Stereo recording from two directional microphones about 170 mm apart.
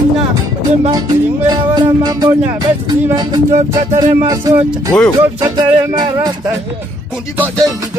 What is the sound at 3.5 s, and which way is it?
Music, 45° right (ahead or behind).